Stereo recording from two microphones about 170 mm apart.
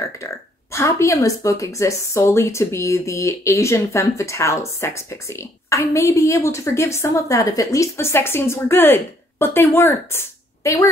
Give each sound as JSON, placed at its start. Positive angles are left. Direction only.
{"t": 0.2, "sound": "a woman's voice", "side_deg": 15}